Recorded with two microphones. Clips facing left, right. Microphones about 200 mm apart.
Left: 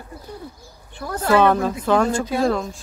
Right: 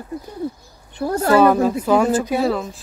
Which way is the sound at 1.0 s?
35° right (ahead or behind).